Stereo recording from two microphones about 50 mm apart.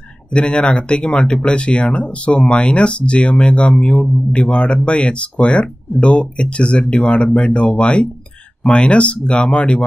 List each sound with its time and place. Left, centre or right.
0.3 s speech: centre
9.5 s speech: centre